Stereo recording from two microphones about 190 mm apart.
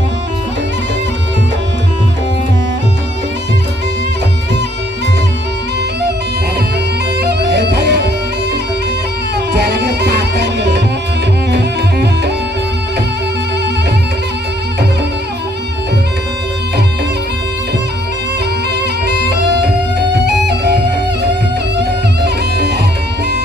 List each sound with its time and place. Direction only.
7.2 s music: 60° right (ahead or behind)
9.5 s music: 65° right (ahead or behind)
19.5 s music: 60° right (ahead or behind)